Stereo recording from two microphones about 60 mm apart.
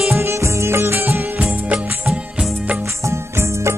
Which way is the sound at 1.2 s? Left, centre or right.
Right.